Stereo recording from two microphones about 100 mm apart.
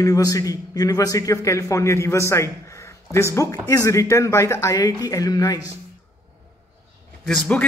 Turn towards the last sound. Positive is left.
turn(degrees=5)  # may be behind; listen again after turning